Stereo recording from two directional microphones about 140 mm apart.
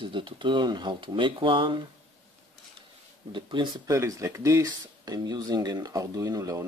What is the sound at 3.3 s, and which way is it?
Speech, 35° right (ahead or behind).